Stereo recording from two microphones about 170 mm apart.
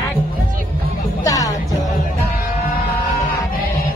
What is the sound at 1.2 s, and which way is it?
Music, 20° left (ahead or behind).